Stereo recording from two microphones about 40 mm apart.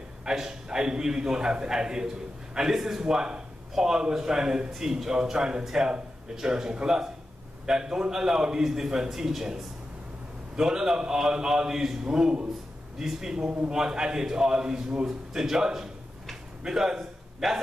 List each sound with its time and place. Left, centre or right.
0.2 s a man's voice: centre
13.0 s a man's voice: centre
13.7 s a man's voice: centre
17.4 s speech: centre